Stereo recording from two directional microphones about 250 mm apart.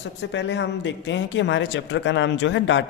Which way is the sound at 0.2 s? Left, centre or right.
Left.